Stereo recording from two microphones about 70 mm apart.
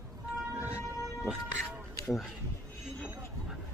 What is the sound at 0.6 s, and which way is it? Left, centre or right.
Train, right.